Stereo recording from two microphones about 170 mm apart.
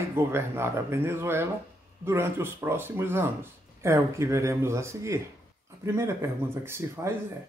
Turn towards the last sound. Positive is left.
turn(degrees=-15)  # may be behind; listen again after turning